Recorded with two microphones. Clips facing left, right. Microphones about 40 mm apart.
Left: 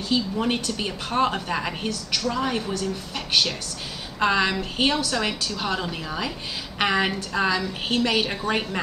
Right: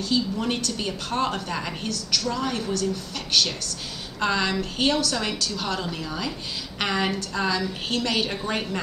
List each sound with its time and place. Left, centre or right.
0.1 s a woman's voice: centre
4.2 s a woman's voice: centre